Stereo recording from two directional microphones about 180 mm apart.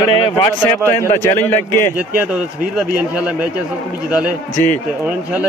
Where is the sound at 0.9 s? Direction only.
15° left (ahead or behind).